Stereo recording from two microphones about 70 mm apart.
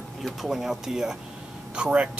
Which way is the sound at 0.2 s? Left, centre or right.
Centre.